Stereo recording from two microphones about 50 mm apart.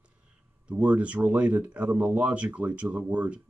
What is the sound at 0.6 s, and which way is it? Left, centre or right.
Speech, right.